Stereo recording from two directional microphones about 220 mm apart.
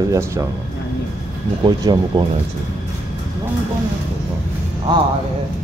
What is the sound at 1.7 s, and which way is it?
Speech, 20° right (ahead or behind).